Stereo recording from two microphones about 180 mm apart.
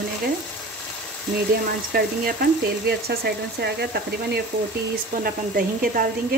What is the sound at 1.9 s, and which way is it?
A woman's voice, 60° right (ahead or behind).